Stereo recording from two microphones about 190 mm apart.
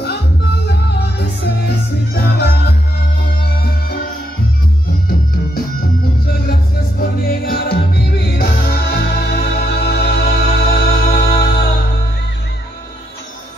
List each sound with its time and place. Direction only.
0.7 s music: 60° left (ahead or behind)
6.5 s music: 50° left (ahead or behind)